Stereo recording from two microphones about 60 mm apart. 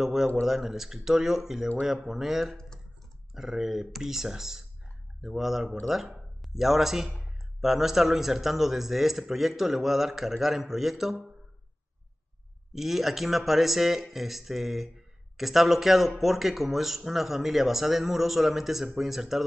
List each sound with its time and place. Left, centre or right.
0.0 s speech: centre
12.7 s speech: centre